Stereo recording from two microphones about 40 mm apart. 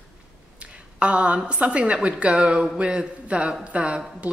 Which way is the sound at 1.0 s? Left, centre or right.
Right.